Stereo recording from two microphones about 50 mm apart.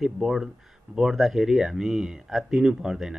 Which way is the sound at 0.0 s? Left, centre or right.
Centre.